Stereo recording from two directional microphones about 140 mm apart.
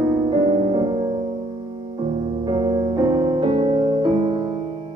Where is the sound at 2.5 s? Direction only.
30° right (ahead or behind).